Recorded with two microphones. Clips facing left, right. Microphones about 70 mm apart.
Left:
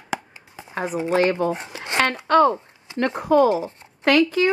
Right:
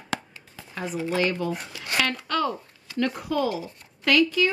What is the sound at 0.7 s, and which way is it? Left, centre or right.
Speech, left.